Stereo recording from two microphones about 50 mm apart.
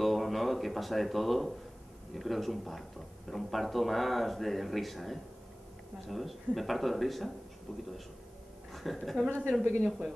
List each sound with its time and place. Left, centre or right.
0.0 s a sound: centre
2.1 s speech: centre
8.7 s speech: centre
9.8 s speech: centre